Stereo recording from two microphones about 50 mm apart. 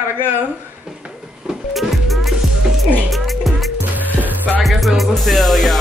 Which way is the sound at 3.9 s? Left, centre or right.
Right.